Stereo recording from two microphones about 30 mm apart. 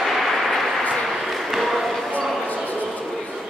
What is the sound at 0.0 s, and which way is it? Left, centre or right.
Vehicle, centre.